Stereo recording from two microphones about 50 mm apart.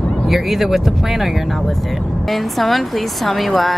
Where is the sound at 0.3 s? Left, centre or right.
Centre.